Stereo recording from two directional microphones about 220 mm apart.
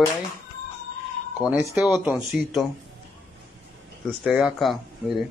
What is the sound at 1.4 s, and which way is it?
Speech, 5° right (ahead or behind).